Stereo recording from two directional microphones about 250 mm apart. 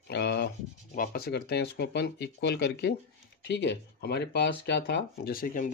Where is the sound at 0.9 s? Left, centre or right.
Left.